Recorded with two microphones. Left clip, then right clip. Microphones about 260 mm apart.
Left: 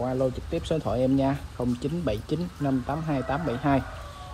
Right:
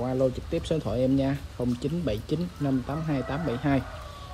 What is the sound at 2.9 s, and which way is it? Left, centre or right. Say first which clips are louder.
Speech: left 3 dB; centre.